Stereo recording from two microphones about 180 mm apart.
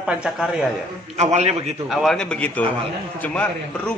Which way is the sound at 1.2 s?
40° right (ahead or behind).